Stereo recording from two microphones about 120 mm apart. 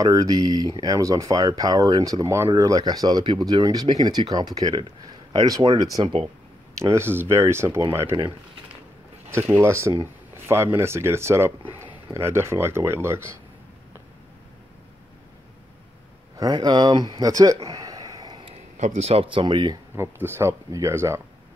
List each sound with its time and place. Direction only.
0.0 s speech: 30° right (ahead or behind)
9.6 s speech: 20° right (ahead or behind)
16.3 s speech: 35° right (ahead or behind)
18.4 s speech: 65° right (ahead or behind); by 19.8 s 40° right (ahead or behind)
20.0 s speech: 20° right (ahead or behind)